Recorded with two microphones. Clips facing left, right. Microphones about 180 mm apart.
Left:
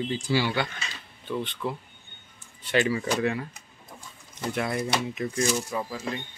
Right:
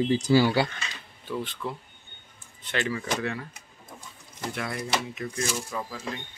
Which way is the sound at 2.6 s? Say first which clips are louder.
Left 5 dB; 10° left (ahead or behind).